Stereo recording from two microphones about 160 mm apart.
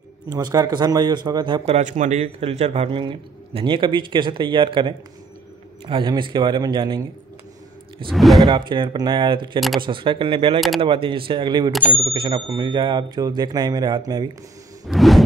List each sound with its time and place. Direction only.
0.3 s speech: 25° right (ahead or behind)
1.7 s a man's voice: 50° right (ahead or behind); by 7.1 s 30° right (ahead or behind)
8.1 s speech: centre (ahead or behind)
8.5 s a man's voice: 30° right (ahead or behind)
11.7 s speech: 10° right (ahead or behind)
12.0 s speech: 30° right (ahead or behind)
14.9 s speech: centre (ahead or behind)